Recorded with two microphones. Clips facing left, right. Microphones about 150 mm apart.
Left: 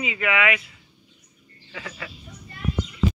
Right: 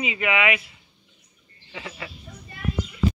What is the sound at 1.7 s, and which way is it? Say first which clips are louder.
Speech: even; 25° right (ahead or behind).